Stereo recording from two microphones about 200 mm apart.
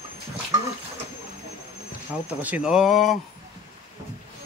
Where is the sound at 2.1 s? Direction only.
5° right (ahead or behind).